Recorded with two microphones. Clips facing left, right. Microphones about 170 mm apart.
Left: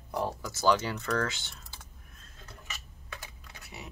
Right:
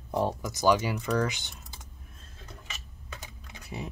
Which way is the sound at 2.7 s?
20° right (ahead or behind).